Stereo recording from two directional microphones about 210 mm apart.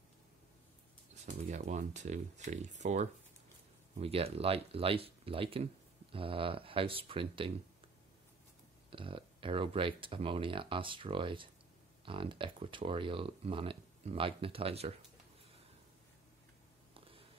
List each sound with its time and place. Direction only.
1.2 s speech: 35° right (ahead or behind)
8.9 s speech: 25° right (ahead or behind)
16.9 s a sound: 25° right (ahead or behind)